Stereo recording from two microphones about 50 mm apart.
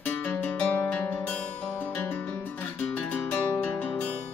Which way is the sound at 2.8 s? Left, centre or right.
Left.